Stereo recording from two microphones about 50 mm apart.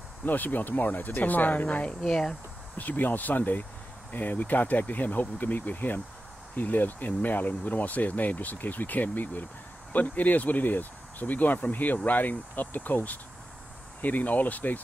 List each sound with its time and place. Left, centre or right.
0.2 s speech: left
2.0 s speech: centre
2.8 s speech: left